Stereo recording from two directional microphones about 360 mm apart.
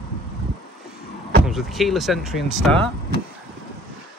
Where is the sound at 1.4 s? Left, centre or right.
Centre.